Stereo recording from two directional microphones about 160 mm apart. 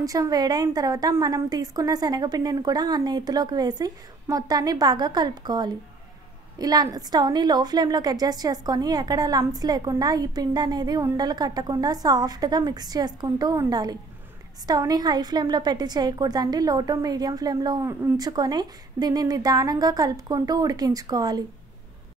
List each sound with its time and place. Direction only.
0.0 s a woman's voice: 20° right (ahead or behind)